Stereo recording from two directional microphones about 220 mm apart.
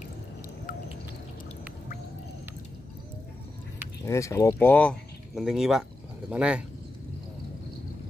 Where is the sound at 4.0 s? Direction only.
15° left (ahead or behind); by 6.6 s 5° right (ahead or behind).